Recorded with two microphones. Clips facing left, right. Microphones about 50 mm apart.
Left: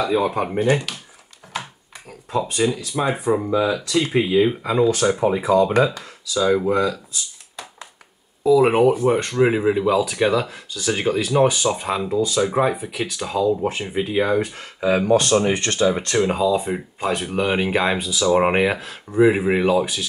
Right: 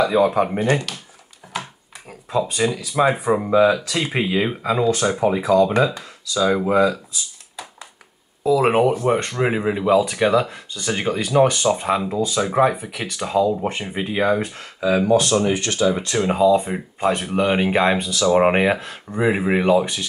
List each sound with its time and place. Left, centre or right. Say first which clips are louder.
0.0 s speech: right 3 dB; centre
0.7 s speech: left 1 dB; centre
1.5 s a sound: right 1 dB; centre
2.3 s speech: even; centre
4.2 s speech: left 3 dB; right
4.5 s speech: left 1 dB; centre
5.4 s speech: right 1 dB; centre
6.3 s speech: right 1 dB; centre
8.5 s speech: left 2 dB; centre
15.5 s speech: even; left
16.1 s speech: right 2 dB; centre